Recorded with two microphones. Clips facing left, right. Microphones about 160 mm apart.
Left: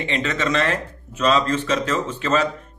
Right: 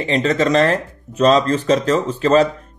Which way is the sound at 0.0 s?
35° right (ahead or behind).